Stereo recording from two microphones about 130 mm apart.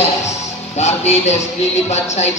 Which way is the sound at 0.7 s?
60° left (ahead or behind).